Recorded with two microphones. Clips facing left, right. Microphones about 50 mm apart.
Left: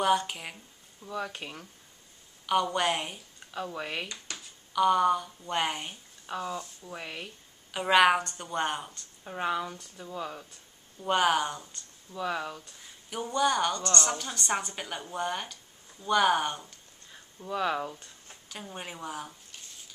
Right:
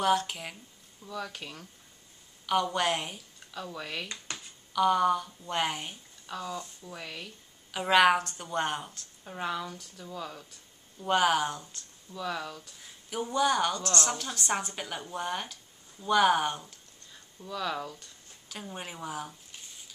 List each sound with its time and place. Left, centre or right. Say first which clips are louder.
0.0 s speech: left 1 dB; centre
1.0 s speech: left 3 dB; centre
2.4 s a woman's voice: left 1 dB; centre
3.5 s speech: left 3 dB; centre
4.7 s a woman's voice: left 1 dB; centre
6.2 s speech: left 2 dB; centre
7.7 s a woman's voice: even; centre
9.2 s speech: left 3 dB; centre
11.0 s a woman's voice: even; centre
12.1 s speech: left 2 dB; centre
12.8 s a woman's voice: right 1 dB; centre
17.5 s speech: left 4 dB; left
18.5 s a woman's voice: even; centre